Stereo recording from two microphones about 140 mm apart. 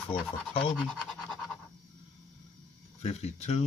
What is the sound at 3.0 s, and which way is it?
Speech, 50° left (ahead or behind).